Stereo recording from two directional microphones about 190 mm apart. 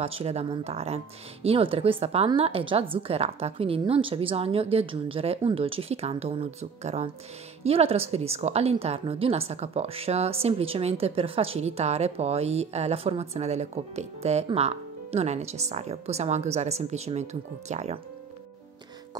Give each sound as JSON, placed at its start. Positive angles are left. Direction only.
{"t": 0.0, "sound": "a woman's voice", "side_deg": -30}